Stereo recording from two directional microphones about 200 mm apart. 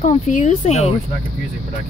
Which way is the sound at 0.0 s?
35° left (ahead or behind).